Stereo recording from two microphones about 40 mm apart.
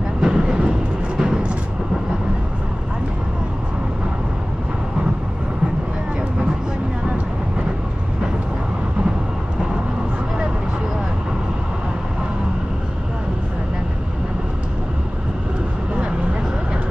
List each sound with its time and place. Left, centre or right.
0.2 s vehicle: centre